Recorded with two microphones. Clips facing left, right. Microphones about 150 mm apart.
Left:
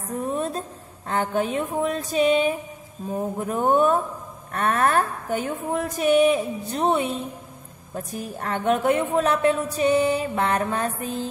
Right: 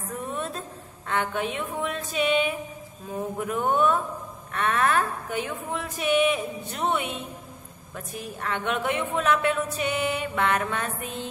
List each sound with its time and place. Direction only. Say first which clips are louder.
0.2 s a woman's voice: left 7 dB; 35° left (ahead or behind)